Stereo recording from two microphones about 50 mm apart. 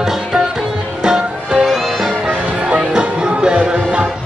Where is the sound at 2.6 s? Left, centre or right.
Centre.